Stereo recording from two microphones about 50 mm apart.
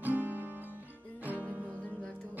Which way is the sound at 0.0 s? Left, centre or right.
Right.